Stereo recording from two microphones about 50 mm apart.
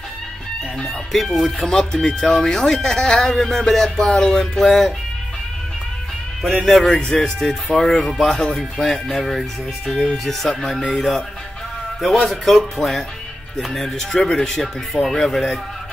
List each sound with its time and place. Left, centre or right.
0.8 s speech: centre
1.7 s speech: centre
6.6 s speech: centre
6.9 s speech: centre
12.3 s speech: centre